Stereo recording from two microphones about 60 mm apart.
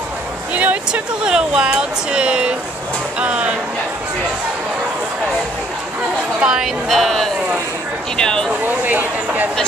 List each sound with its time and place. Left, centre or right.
0.6 s speech: right
1.2 s speech: centre
6.4 s speech: centre
6.9 s speech: centre
8.6 s speech: right